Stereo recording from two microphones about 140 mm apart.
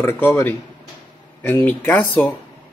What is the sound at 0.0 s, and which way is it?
Speech, 15° left (ahead or behind).